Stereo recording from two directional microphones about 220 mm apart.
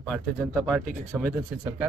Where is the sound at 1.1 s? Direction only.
10° right (ahead or behind).